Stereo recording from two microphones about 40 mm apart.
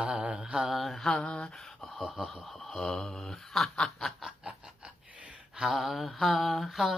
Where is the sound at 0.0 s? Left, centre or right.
Right.